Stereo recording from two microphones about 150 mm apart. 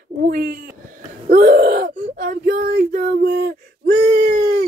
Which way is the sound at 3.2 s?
90° right.